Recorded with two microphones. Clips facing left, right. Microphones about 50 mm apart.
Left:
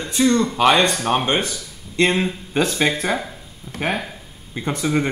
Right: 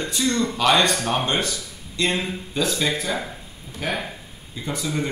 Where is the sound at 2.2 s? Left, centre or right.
Left.